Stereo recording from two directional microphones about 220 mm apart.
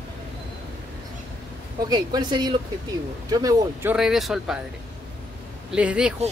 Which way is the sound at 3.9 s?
Centre (ahead or behind).